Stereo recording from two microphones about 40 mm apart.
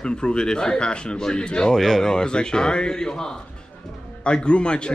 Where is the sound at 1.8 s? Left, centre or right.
Centre.